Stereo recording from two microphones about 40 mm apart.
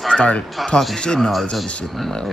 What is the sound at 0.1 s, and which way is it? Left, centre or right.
Speech, left.